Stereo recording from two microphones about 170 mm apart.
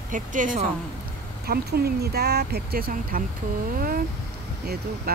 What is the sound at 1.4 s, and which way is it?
Speech, 65° right (ahead or behind).